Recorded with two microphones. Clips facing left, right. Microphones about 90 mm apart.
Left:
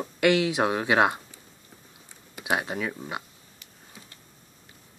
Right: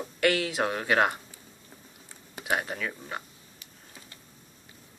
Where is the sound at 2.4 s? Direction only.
15° left (ahead or behind).